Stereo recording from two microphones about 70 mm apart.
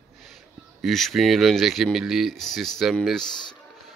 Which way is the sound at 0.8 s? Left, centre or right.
Centre.